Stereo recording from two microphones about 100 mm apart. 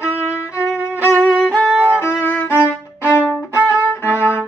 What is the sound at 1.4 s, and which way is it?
Violin, 5° left (ahead or behind).